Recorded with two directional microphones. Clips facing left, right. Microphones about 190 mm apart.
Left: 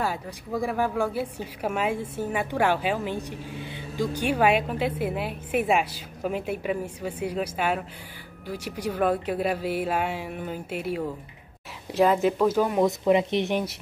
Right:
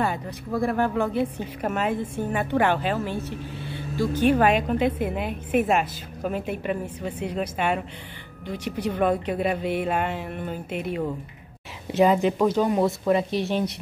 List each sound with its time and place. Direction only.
0.0 s a woman's voice: 5° left (ahead or behind)
12.8 s speech: 20° left (ahead or behind)